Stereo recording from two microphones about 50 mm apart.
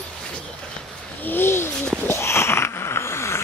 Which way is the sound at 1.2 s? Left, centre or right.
Left.